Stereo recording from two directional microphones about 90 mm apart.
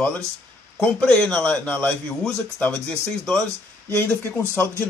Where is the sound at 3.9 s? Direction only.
25° left (ahead or behind).